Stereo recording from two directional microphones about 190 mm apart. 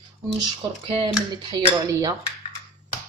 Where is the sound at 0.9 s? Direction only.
20° right (ahead or behind).